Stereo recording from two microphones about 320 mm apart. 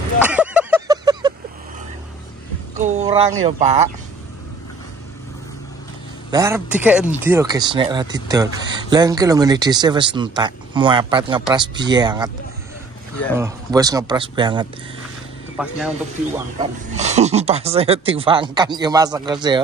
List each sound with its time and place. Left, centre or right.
0.2 s a sound: centre
2.8 s a sound: right
3.4 s speech: right
6.3 s speech: centre
13.4 s speech: centre
15.5 s speech: centre
16.5 s speech: right